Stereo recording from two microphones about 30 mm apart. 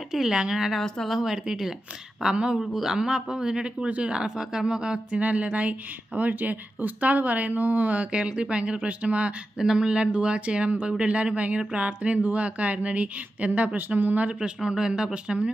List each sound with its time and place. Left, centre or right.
0.2 s a man's voice: right
0.7 s speech: centre
1.2 s a man's voice: right
2.3 s speech: right
2.6 s a man's voice: centre; by 4.3 s right
4.4 s a man's voice: right
5.2 s a woman's voice: right
8.1 s speech: right
8.7 s speech: right
9.6 s a man's voice: right
9.8 s speech: right
13.7 s a woman's voice: right
14.4 s a man's voice: right
15.3 s speech: centre